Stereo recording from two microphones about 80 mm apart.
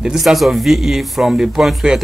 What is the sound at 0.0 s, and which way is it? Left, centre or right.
Speech, centre.